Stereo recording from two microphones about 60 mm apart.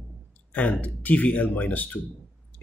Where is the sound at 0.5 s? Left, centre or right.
Left.